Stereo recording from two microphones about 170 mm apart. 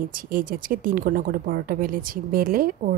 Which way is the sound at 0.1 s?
55° right (ahead or behind).